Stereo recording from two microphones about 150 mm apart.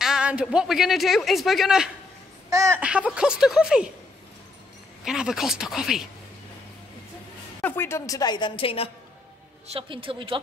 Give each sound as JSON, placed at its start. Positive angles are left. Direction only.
{"t": 0.0, "sound": "speech", "side_deg": -5}
{"t": 2.5, "sound": "speech", "side_deg": -20}
{"t": 2.8, "sound": "speech", "side_deg": -5}
{"t": 5.0, "sound": "speech", "side_deg": -5}
{"t": 7.6, "sound": "a woman's voice", "side_deg": 15}
{"t": 9.7, "sound": "speech", "side_deg": -35}